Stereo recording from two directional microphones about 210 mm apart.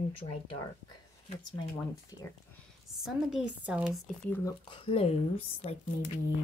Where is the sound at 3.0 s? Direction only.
Centre (ahead or behind).